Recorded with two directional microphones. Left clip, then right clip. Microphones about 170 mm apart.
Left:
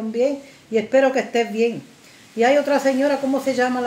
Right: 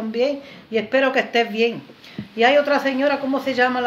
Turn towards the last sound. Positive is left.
turn(degrees=25)  # may be behind; listen again after turning